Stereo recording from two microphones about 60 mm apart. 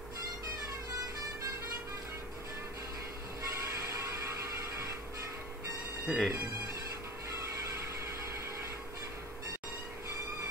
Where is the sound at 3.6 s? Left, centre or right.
Right.